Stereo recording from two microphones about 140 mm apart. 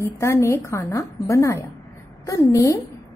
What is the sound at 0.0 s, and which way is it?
A woman's voice, 20° left (ahead or behind).